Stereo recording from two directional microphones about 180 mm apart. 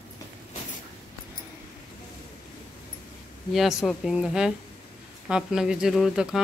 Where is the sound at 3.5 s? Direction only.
Centre (ahead or behind).